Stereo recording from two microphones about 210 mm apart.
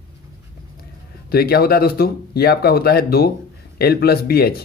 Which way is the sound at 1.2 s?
45° left (ahead or behind).